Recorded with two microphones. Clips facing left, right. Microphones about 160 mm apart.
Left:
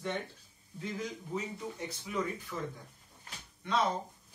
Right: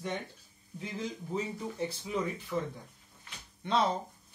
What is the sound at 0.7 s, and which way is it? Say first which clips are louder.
Speech: right 1 dB; 30° right (ahead or behind).